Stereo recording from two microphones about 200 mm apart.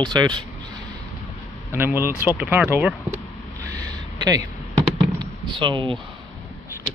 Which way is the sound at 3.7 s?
20° right (ahead or behind).